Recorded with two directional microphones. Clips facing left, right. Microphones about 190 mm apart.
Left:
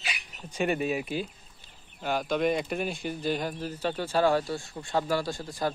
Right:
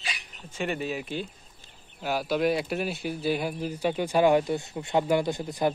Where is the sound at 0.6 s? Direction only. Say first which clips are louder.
Left 3 dB; 15° left (ahead or behind).